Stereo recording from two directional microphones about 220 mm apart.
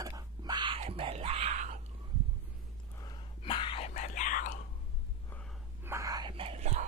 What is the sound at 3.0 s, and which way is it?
Whispering, 20° left (ahead or behind).